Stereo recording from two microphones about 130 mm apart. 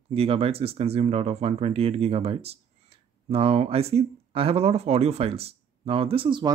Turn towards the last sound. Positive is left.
turn(degrees=-35)  # may be behind; listen again after turning